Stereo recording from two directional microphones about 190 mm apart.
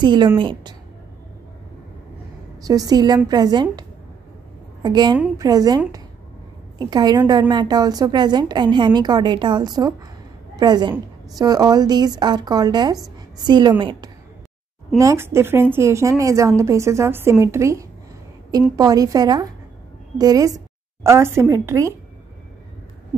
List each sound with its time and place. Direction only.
0.0 s a woman's voice: 25° right (ahead or behind)
2.6 s a woman's voice: 20° right (ahead or behind)
4.8 s a woman's voice: 20° right (ahead or behind)